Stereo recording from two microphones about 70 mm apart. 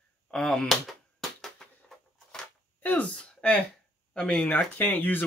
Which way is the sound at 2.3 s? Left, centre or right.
Centre.